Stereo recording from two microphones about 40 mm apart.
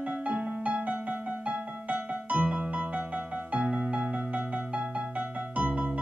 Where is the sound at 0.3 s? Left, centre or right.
Right.